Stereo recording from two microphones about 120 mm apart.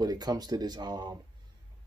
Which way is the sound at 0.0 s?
35° right (ahead or behind).